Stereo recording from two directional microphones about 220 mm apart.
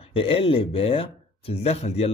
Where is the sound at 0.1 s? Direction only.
25° left (ahead or behind).